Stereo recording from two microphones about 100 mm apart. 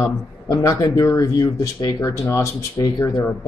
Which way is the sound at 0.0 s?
30° left (ahead or behind).